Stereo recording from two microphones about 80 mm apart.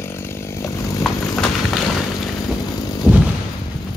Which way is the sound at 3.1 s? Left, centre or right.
Centre.